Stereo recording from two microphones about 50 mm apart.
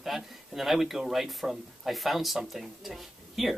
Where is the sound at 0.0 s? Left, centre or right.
Centre.